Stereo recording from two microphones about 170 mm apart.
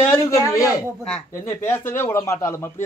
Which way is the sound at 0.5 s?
20° left (ahead or behind).